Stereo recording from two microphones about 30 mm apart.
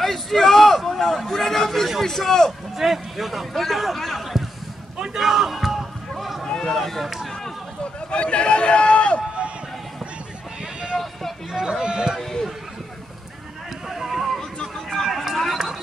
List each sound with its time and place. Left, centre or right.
0.0 s a sound: centre
2.0 s a man's voice: centre
2.8 s a man's voice: centre
5.1 s basketball bounce: centre
6.4 s a sound: centre
6.7 s a man's voice: centre
8.1 s speech: left
10.9 s vehicle: centre
11.5 s speech: right
12.2 s a man's voice: centre
13.8 s a sound: centre
14.9 s run: centre